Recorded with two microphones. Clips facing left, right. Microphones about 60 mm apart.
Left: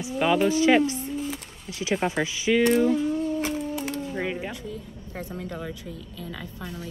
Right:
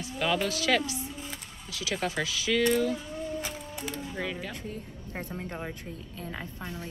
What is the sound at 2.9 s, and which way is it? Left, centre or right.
Music, left.